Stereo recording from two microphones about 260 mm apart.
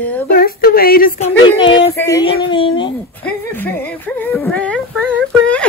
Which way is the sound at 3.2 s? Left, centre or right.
Centre.